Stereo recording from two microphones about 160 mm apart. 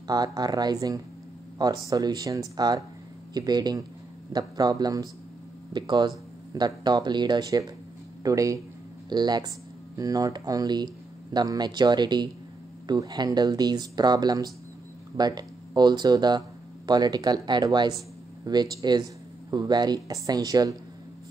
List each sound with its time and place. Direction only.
0.0 s speech: 25° right (ahead or behind)